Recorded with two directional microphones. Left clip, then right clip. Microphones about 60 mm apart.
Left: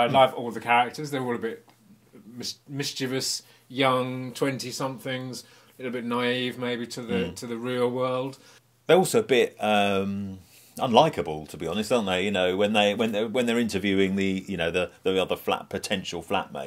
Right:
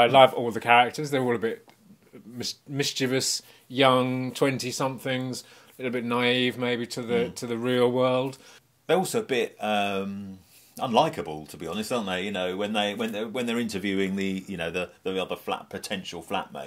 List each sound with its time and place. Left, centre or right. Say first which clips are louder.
0.0 s speech: right 3 dB; right
8.8 s speech: left 5 dB; left